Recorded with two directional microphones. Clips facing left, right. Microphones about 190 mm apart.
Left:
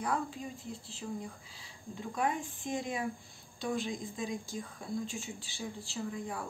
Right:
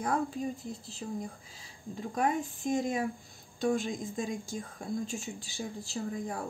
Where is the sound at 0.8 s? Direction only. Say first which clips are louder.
Right 2 dB; 40° right (ahead or behind).